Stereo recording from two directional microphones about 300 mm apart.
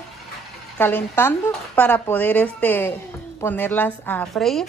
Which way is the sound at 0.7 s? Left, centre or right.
Centre.